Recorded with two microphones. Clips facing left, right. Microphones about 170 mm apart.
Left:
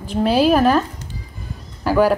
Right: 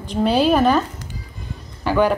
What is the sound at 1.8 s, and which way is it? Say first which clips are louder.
Speech: left 2 dB; 5° left (ahead or behind).